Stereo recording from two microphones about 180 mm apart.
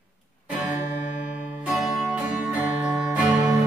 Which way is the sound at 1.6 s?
5° right (ahead or behind).